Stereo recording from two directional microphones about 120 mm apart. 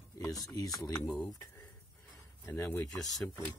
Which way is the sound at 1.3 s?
30° left (ahead or behind).